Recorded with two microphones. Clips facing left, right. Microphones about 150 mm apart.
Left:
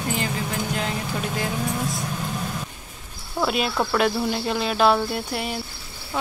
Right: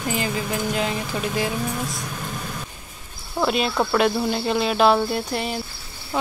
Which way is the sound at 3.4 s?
5° left (ahead or behind).